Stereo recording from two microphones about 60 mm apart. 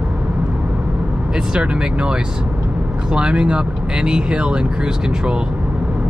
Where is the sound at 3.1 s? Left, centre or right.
Centre.